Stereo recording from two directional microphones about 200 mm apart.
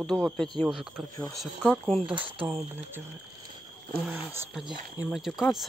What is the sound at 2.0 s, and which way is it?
Speech, 25° right (ahead or behind).